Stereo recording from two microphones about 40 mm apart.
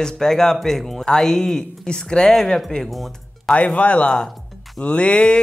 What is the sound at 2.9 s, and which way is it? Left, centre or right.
Music, centre.